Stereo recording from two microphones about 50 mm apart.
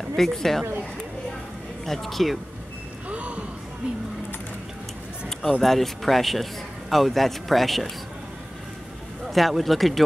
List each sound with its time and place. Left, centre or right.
0.1 s speech: centre
1.9 s speech: centre
3.1 s a sound: right
5.6 s speech: centre
9.3 s speech: centre